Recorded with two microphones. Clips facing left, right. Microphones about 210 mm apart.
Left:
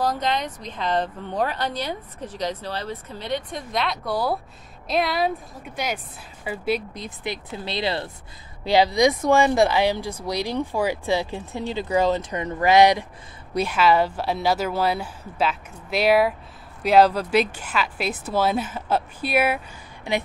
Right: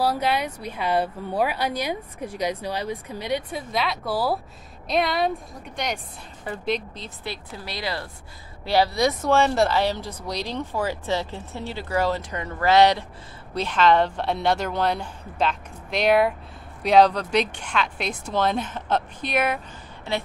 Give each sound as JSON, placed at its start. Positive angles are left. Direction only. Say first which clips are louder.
{"t": 0.0, "sound": "speech", "louder": "right 1 dB", "side_deg": -10}